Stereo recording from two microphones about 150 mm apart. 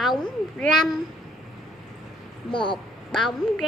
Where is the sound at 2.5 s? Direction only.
35° left (ahead or behind).